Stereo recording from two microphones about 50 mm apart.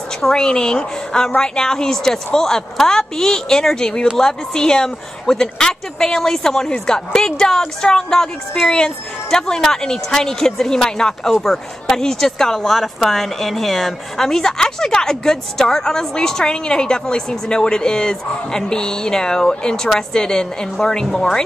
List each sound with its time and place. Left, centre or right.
0.3 s a woman's voice: centre